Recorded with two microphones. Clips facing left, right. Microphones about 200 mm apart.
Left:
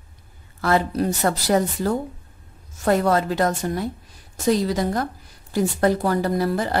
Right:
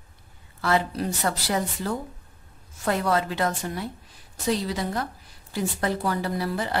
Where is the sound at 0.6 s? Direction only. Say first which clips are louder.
Left 4 dB; 45° left (ahead or behind).